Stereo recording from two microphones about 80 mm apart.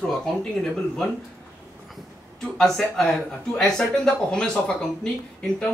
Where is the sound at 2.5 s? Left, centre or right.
Centre.